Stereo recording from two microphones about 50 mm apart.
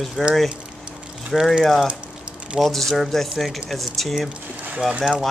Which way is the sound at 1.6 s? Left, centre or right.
Centre.